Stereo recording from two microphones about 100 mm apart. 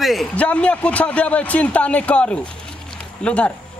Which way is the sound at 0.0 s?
Centre (ahead or behind).